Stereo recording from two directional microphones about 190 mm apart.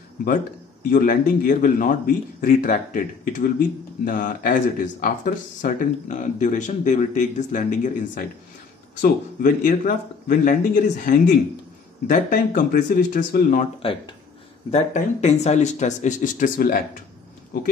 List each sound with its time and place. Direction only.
0.8 s speech: 45° left (ahead or behind)
14.7 s speech: 35° left (ahead or behind)